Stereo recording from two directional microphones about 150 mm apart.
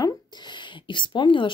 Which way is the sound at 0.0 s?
30° left (ahead or behind).